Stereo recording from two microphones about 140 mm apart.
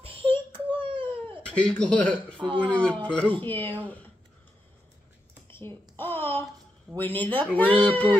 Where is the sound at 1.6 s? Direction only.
5° left (ahead or behind).